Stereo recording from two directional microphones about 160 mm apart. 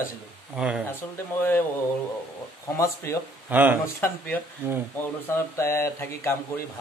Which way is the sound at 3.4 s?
10° right (ahead or behind).